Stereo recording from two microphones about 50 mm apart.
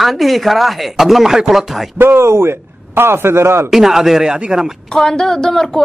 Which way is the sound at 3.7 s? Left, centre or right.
Centre.